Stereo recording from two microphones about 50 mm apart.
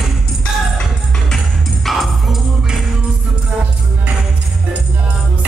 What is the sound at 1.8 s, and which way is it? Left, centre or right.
Music, centre.